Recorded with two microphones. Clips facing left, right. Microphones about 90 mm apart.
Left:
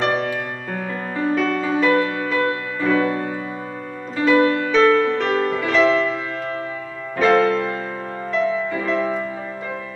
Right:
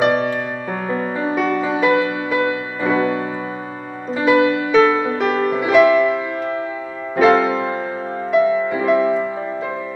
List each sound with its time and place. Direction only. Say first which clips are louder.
0.0 s music: right 4 dB; 20° right (ahead or behind)